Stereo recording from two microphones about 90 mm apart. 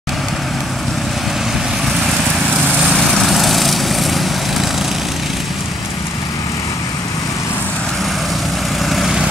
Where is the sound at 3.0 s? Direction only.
5° left (ahead or behind).